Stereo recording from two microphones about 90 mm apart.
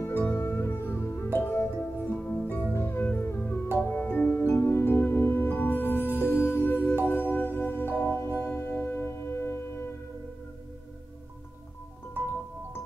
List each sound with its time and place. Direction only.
0.0 s music: 20° left (ahead or behind)